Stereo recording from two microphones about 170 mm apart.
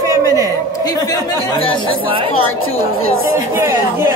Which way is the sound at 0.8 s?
25° left (ahead or behind).